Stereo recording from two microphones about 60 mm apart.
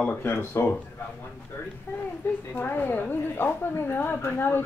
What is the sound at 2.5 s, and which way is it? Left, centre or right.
A woman's voice, left.